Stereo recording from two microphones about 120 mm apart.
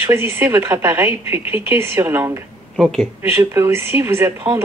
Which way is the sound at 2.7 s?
Centre (ahead or behind).